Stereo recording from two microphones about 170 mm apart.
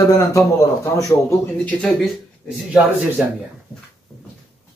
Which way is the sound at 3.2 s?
5° right (ahead or behind).